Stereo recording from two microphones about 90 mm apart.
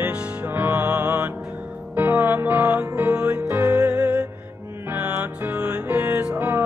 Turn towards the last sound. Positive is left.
turn(degrees=-20)  # may be behind; listen again after turning